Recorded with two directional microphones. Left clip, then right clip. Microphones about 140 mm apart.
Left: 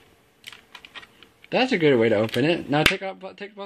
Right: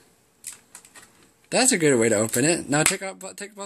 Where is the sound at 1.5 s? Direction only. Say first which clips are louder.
Left 1 dB; 15° right (ahead or behind).